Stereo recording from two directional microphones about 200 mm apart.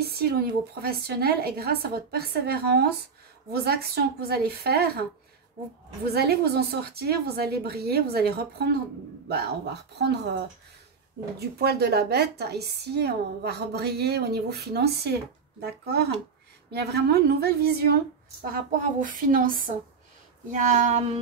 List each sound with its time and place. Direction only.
0.0 s a woman's voice: 50° right (ahead or behind)
6.1 s a woman's voice: 55° right (ahead or behind)
11.3 s a woman's voice: 55° right (ahead or behind)
20.5 s female singing: 40° right (ahead or behind)